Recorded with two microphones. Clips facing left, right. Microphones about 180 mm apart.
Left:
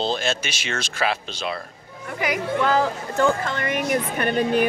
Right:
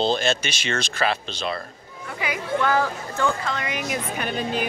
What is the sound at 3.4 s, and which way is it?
A woman's voice, 55° left (ahead or behind).